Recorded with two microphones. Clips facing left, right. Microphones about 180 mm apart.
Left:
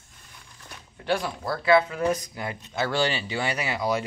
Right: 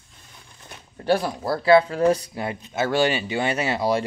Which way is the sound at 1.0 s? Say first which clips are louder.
Right 5 dB; 40° right (ahead or behind).